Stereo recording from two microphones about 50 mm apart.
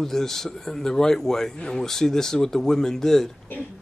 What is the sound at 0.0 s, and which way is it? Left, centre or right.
Speech, centre.